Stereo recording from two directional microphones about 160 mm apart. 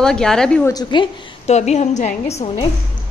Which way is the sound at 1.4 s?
45° left (ahead or behind).